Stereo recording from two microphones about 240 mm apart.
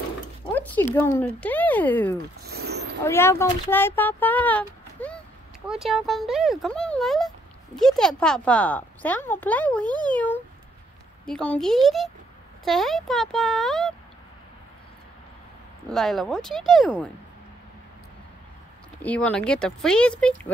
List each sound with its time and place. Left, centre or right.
0.5 s speech: centre
2.5 s a sound: right
3.0 s speech: centre
9.8 s speech: centre
10.1 s speech: centre
15.9 s speech: centre
18.9 s speech: centre